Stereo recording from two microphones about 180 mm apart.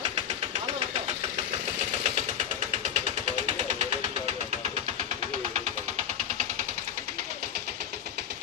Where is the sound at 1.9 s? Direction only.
40° right (ahead or behind).